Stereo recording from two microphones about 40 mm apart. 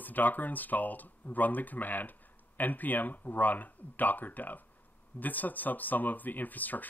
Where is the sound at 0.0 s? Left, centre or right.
Left.